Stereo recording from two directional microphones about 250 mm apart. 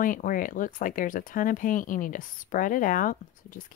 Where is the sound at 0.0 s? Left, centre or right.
Left.